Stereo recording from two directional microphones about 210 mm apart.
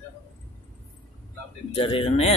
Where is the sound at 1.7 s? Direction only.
25° left (ahead or behind).